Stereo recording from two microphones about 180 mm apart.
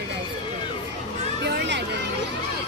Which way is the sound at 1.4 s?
70° right (ahead or behind).